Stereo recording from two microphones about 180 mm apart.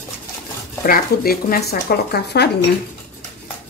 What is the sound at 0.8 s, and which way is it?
Speech, 55° left (ahead or behind).